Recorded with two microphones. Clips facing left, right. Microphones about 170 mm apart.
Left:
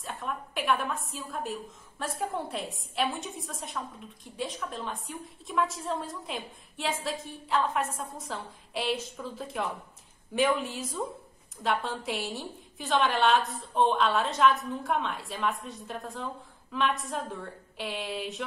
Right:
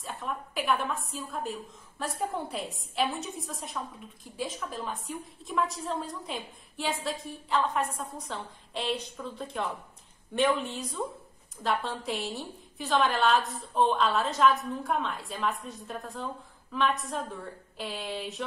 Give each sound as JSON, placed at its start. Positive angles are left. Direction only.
{"t": 0.0, "sound": "a woman's voice", "side_deg": 0}